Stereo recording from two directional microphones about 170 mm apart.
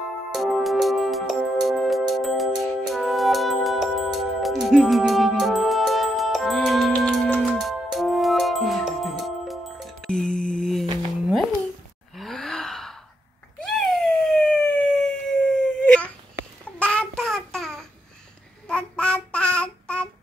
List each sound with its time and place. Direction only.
0.3 s music: centre (ahead or behind)
12.2 s gasp: centre (ahead or behind)
13.6 s emergency vehicle: 5° left (ahead or behind)
16.7 s child singing: 5° left (ahead or behind)